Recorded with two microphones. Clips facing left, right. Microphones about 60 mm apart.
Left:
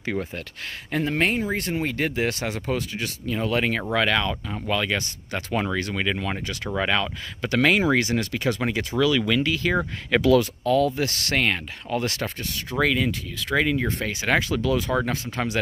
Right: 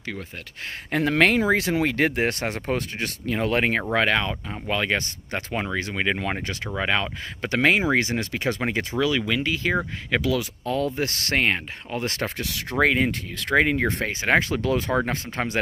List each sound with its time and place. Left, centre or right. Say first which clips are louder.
0.0 s speech: left 6 dB; centre
1.0 s speech: right 5 dB; right
2.1 s speech: right 1 dB; right
5.5 s speech: left 3 dB; centre
6.1 s speech: right 1 dB; right
6.9 s speech: even; right
9.8 s speech: left 2 dB; centre
10.6 s speech: left 4 dB; right
12.4 s speech: right 2 dB; right
12.7 s speech: right 2 dB; right
14.0 s speech: right 2 dB; right